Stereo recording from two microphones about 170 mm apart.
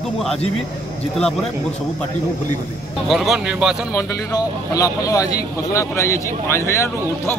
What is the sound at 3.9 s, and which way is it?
Speech, 20° left (ahead or behind).